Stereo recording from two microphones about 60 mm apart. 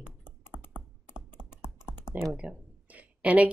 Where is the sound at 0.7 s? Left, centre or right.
Centre.